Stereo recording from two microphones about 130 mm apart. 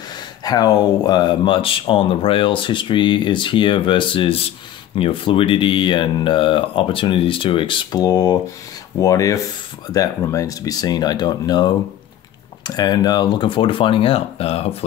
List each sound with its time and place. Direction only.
0.4 s speech: 30° left (ahead or behind); by 14.9 s 50° left (ahead or behind)